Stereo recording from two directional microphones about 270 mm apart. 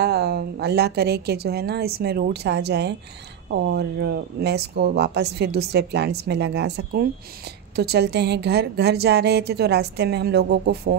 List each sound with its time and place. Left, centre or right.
0.0 s speech: right